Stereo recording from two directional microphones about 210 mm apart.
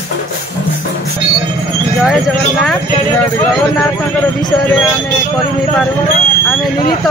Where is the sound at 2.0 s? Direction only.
Centre (ahead or behind).